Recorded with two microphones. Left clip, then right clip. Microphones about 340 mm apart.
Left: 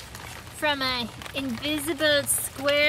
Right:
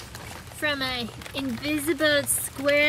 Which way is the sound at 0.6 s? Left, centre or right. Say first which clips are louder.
Left 2 dB; centre.